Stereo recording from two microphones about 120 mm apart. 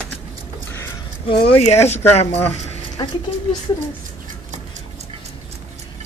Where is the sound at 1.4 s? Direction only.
65° left (ahead or behind).